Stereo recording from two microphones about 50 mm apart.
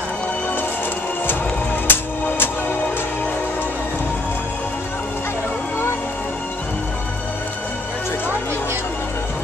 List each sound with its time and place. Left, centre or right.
1.9 s music: left